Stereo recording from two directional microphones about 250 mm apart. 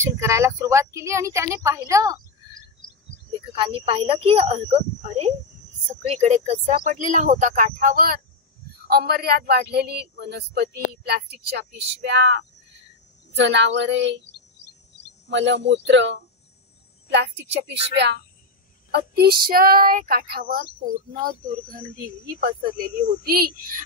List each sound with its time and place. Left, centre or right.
0.0 s speech: centre
1.9 s a sound: centre
3.3 s a woman's voice: right
14.2 s chirp: left
15.2 s a woman's voice: right
21.7 s speech: right